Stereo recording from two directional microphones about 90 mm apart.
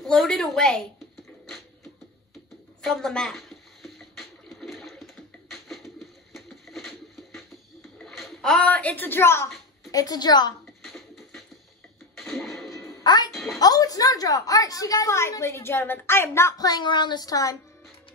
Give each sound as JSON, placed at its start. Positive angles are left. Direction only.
{"t": 0.0, "sound": "a sound", "side_deg": 5}
{"t": 2.8, "sound": "a sound", "side_deg": 5}
{"t": 9.8, "sound": "speech", "side_deg": 45}
{"t": 10.8, "sound": "music", "side_deg": 0}
{"t": 12.2, "sound": "a sound", "side_deg": 0}
{"t": 13.0, "sound": "music", "side_deg": 55}
{"t": 13.3, "sound": "music", "side_deg": 0}
{"t": 13.6, "sound": "a woman's voice", "side_deg": 45}
{"t": 15.1, "sound": "a woman's voice", "side_deg": 30}
{"t": 16.5, "sound": "speech", "side_deg": 45}